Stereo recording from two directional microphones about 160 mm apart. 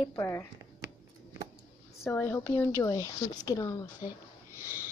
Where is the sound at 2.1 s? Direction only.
10° left (ahead or behind).